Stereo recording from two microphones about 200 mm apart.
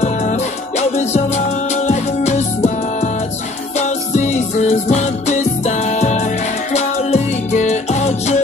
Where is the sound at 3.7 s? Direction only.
35° left (ahead or behind).